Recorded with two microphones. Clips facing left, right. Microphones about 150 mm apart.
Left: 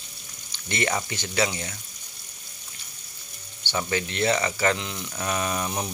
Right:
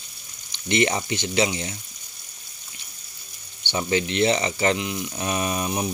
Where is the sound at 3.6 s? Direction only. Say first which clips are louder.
Right 4 dB; 20° right (ahead or behind).